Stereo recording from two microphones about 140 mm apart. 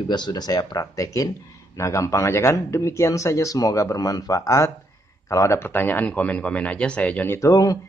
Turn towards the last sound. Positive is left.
turn(degrees=25)  # may be behind; listen again after turning